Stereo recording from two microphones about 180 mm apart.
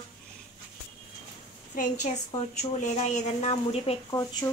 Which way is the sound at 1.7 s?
50° left (ahead or behind).